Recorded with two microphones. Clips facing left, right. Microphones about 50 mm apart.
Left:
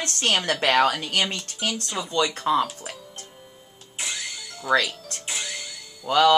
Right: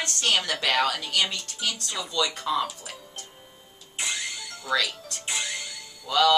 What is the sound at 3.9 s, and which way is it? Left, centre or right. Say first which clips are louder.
Vehicle: right 1 dB; centre.